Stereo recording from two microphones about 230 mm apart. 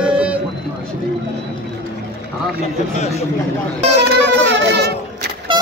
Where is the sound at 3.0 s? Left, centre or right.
Left.